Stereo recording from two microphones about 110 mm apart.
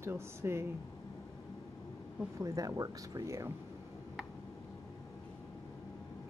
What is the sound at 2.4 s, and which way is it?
Speech, 30° right (ahead or behind).